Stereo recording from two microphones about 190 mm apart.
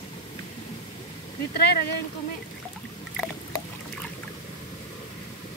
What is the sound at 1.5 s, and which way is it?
Speech, 60° left (ahead or behind).